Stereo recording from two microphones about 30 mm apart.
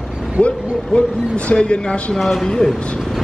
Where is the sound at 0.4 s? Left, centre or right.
Left.